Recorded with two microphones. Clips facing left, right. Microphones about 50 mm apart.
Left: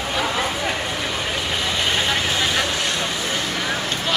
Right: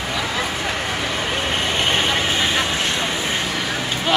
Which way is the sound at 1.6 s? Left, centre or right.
Right.